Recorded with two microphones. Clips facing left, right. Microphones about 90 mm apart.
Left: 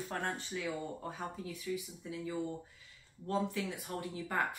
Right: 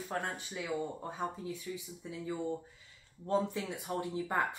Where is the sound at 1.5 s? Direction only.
25° right (ahead or behind).